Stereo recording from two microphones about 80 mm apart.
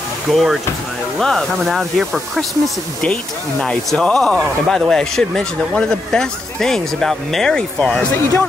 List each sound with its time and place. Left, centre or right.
0.3 s speech: centre
3.6 s speech: centre
8.1 s speech: left